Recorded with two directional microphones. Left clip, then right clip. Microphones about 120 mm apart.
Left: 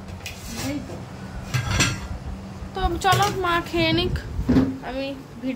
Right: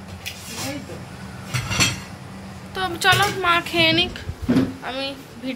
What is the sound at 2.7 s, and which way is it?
A woman's voice, 20° left (ahead or behind).